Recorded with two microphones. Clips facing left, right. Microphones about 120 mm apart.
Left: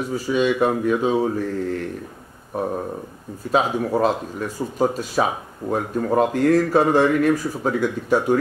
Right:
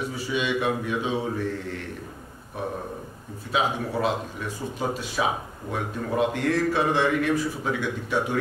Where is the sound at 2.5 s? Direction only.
40° left (ahead or behind).